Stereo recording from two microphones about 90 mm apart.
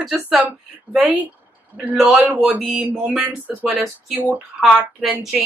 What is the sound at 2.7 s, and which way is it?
Speech, 15° right (ahead or behind).